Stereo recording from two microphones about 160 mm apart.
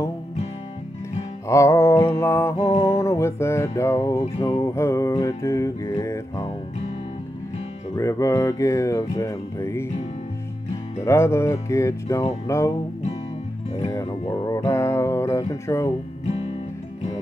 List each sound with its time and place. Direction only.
1.5 s music: 20° left (ahead or behind)
2.5 s music: 40° left (ahead or behind)
2.9 s music: 15° left (ahead or behind)
7.9 s speech: 20° left (ahead or behind)
11.0 s music: 15° left (ahead or behind)
14.3 s speech: 25° left (ahead or behind)
14.7 s music: 15° left (ahead or behind)
15.6 s speech: 20° left (ahead or behind)
16.3 s music: 40° left (ahead or behind)